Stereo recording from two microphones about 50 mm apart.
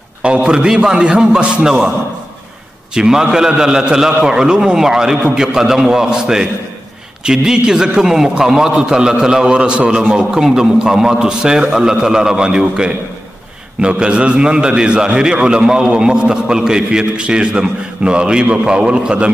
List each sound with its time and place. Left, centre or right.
0.2 s a man's voice: centre
2.9 s a man's voice: centre